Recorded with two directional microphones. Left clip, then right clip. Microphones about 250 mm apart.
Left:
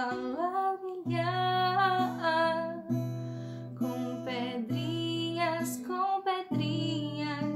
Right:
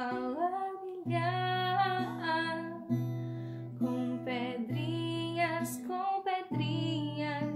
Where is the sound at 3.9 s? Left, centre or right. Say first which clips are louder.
Left 1 dB; centre.